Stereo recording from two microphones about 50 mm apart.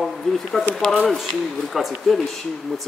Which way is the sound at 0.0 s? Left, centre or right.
Centre.